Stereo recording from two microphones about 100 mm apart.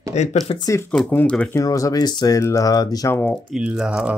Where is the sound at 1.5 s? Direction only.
35° left (ahead or behind).